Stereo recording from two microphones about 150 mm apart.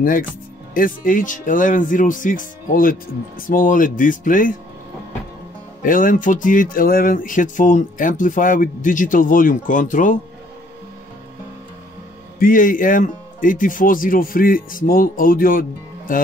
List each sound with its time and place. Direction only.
0.7 s speech: 65° left (ahead or behind)
5.8 s speech: 65° left (ahead or behind)
12.4 s speech: 65° left (ahead or behind)